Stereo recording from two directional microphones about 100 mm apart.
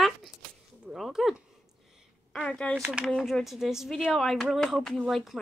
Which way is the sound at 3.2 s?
Centre (ahead or behind).